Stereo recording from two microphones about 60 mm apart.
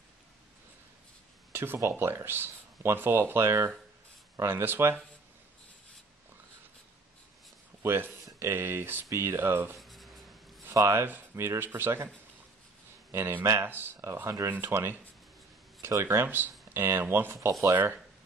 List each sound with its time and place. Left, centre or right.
1.5 s a sound: right
1.8 s speech: right
7.8 s speech: right
9.8 s writing: centre
10.7 s speech: right
13.1 s speech: right
14.2 s speech: right
14.5 s speech: right
16.0 s speech: right